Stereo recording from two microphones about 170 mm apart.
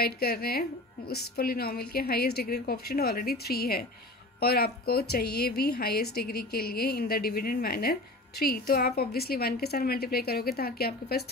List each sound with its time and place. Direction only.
0.0 s a woman's voice: 65° left (ahead or behind)